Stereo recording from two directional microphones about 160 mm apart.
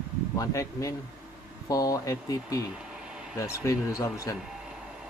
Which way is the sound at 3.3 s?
20° left (ahead or behind).